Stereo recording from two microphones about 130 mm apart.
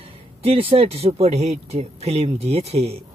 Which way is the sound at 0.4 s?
50° right (ahead or behind).